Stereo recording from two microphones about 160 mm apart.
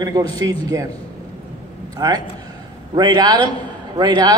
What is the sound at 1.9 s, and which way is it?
A man's voice, 25° right (ahead or behind).